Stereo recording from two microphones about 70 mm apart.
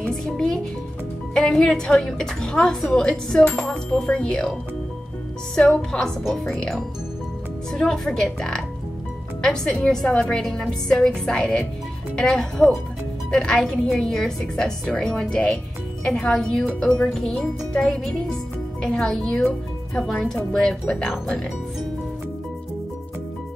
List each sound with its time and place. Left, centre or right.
0.1 s music: centre
1.3 s a woman's voice: centre
5.6 s a woman's voice: centre
7.7 s a woman's voice: centre
16.8 s a woman's voice: centre
17.1 s a woman's voice: centre